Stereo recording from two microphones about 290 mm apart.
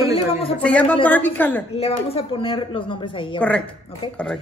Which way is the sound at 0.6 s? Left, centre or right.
Centre.